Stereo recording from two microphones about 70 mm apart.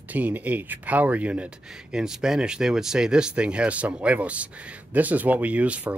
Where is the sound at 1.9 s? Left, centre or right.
Centre.